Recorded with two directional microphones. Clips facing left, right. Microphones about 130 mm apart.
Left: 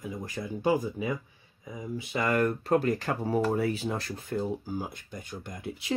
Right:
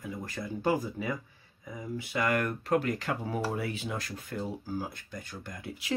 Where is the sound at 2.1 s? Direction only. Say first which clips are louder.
Left 3 dB; 30° left (ahead or behind).